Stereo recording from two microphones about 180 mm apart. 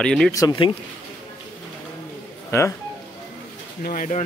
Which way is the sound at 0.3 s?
20° left (ahead or behind).